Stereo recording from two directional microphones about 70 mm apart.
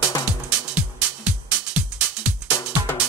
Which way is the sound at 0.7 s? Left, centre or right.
Centre.